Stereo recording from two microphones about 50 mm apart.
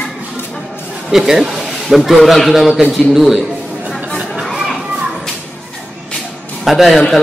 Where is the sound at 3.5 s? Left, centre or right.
Right.